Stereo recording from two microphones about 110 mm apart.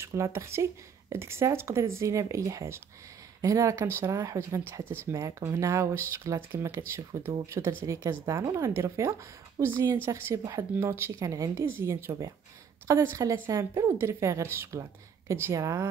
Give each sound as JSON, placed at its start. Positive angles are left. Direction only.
{"t": 0.0, "sound": "speech", "side_deg": -25}